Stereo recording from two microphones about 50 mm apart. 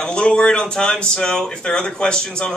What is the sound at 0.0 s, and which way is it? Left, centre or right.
Speech, centre.